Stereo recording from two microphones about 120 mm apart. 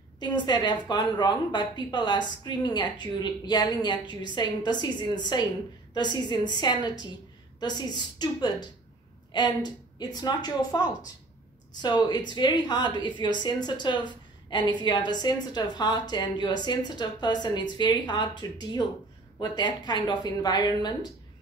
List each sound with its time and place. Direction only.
0.2 s a woman's voice: 40° left (ahead or behind)
11.8 s a woman's voice: 35° left (ahead or behind)